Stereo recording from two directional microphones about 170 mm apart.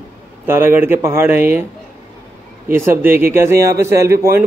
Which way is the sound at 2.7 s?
15° right (ahead or behind).